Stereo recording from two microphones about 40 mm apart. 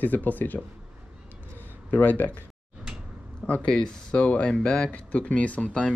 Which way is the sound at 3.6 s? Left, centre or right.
Centre.